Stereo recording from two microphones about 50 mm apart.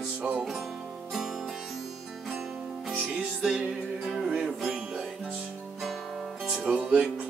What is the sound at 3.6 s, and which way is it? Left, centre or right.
Music, centre.